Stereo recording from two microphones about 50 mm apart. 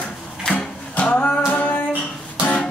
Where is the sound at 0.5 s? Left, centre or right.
Left.